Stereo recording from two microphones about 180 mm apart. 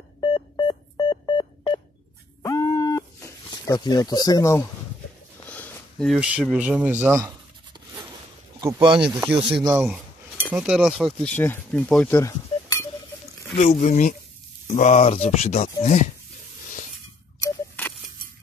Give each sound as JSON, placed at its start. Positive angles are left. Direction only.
{"t": 0.2, "sound": "a sound", "side_deg": 25}
{"t": 5.5, "sound": "speech", "side_deg": 5}
{"t": 8.5, "sound": "speech", "side_deg": -20}
{"t": 9.0, "sound": "speech", "side_deg": -5}
{"t": 13.6, "sound": "speech", "side_deg": 40}
{"t": 17.4, "sound": "scissors", "side_deg": 15}